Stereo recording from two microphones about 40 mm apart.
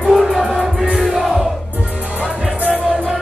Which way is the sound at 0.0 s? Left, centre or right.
Centre.